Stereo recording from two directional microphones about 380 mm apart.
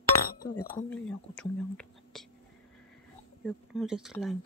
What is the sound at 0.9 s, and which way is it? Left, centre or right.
Speech, centre.